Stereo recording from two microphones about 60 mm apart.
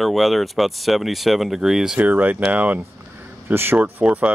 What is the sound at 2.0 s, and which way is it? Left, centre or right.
Speech, right.